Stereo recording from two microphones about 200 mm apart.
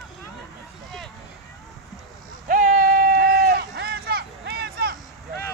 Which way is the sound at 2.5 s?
40° right (ahead or behind).